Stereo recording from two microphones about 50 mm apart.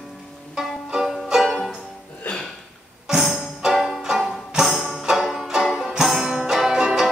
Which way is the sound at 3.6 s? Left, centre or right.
Centre.